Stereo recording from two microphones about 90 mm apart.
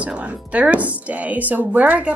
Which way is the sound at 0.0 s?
15° right (ahead or behind).